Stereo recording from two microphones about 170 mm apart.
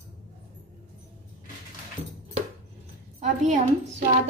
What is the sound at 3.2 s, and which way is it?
Speech, 45° right (ahead or behind).